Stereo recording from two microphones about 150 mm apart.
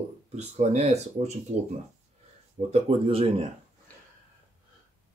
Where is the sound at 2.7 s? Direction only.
40° right (ahead or behind).